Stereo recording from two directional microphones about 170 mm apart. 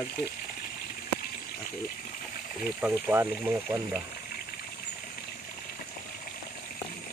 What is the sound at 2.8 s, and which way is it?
Speech, 10° right (ahead or behind).